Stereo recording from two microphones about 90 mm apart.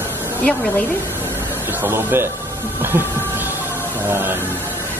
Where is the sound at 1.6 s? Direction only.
25° right (ahead or behind).